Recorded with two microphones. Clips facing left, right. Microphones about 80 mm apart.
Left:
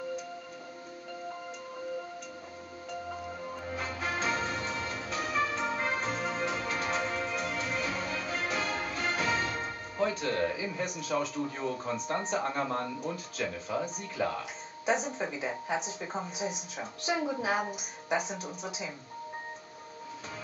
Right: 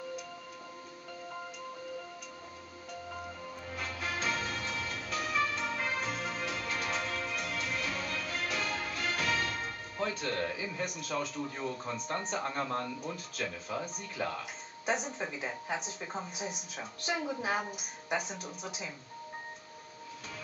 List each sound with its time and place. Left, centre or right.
3.7 s music: centre
10.0 s speech: centre
12.4 s speech: centre
13.1 s speech: centre